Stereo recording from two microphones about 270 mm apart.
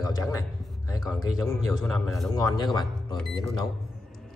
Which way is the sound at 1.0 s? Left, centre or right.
Centre.